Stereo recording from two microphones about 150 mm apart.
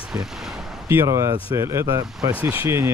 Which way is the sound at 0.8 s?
20° right (ahead or behind).